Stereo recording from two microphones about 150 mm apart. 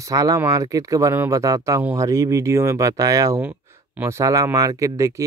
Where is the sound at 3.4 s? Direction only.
15° right (ahead or behind).